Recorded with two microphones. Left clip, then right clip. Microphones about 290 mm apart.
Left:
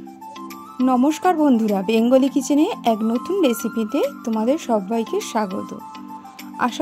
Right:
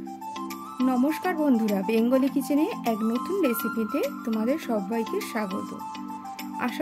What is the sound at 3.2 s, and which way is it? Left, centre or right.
Speech, centre.